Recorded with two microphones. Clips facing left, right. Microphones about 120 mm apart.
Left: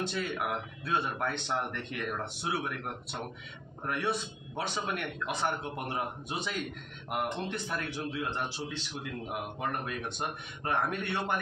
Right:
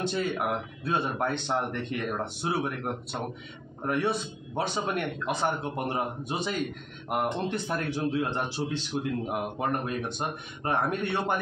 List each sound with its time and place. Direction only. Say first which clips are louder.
0.0 s a man's voice: right 5 dB; 35° right (ahead or behind)